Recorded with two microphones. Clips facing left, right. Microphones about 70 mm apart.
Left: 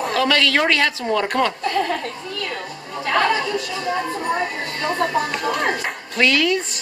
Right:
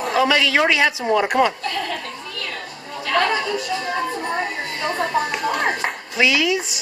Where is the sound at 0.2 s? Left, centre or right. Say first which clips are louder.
Right 1 dB; centre.